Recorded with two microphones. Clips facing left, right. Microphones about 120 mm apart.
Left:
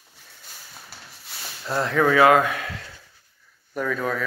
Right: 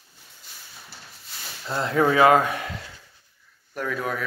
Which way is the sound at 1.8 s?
25° right (ahead or behind).